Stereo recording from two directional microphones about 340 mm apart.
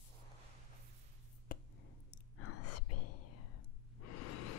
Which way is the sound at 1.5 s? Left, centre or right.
Left.